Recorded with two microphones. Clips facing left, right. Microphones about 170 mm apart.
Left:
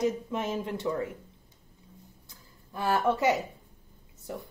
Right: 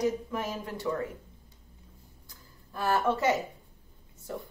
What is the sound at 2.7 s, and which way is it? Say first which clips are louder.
Speech: left 1 dB; 20° left (ahead or behind).